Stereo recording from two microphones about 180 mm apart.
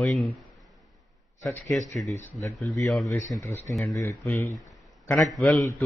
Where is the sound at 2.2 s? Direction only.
15° left (ahead or behind).